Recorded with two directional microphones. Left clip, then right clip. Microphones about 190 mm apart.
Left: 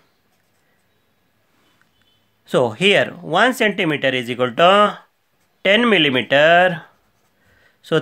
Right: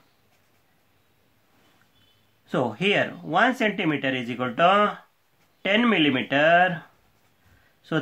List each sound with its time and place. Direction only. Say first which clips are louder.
2.4 s speech: left 8 dB; 50° left (ahead or behind)